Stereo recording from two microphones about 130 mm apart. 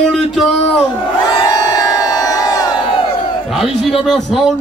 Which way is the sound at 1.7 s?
25° left (ahead or behind).